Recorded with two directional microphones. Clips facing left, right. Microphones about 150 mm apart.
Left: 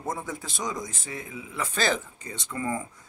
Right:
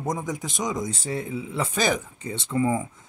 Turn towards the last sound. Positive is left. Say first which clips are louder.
# right 7 dB
turn(degrees=-20)  # may be behind; listen again after turning